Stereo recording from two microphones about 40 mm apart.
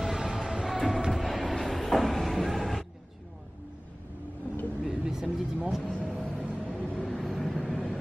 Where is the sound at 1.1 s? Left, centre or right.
Centre.